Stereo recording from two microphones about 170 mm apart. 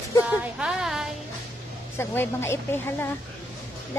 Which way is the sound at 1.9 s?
15° left (ahead or behind).